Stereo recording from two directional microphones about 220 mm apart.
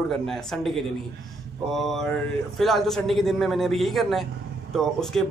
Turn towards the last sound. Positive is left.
turn(degrees=0)  # may be behind; listen again after turning